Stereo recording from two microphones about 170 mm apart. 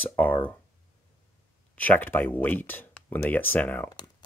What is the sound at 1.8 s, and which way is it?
Speech, 10° left (ahead or behind).